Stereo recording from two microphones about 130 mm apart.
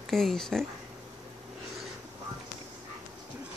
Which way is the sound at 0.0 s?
5° left (ahead or behind).